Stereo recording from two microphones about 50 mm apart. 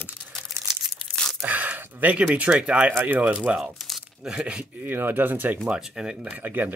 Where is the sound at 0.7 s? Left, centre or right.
Centre.